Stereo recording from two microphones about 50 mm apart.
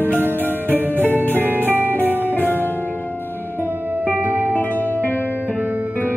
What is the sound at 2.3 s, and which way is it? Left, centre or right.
Music, left.